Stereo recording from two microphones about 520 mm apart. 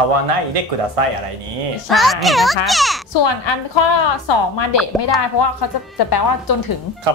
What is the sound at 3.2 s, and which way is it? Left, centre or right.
A woman's voice, left.